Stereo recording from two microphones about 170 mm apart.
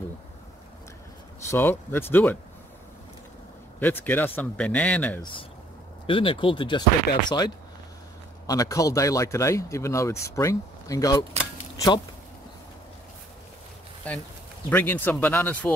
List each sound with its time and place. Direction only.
1.5 s speech: 15° left (ahead or behind)
3.8 s speech: 10° left (ahead or behind)
5.2 s speech: 30° left (ahead or behind)
11.7 s a sound: 20° left (ahead or behind)
14.7 s speech: 10° left (ahead or behind)